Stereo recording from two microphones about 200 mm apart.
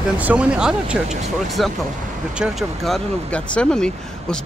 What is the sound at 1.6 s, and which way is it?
Speech, centre (ahead or behind).